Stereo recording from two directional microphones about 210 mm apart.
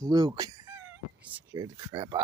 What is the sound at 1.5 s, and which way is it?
Speech, 20° right (ahead or behind).